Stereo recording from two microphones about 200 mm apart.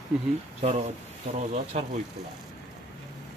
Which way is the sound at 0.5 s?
35° right (ahead or behind).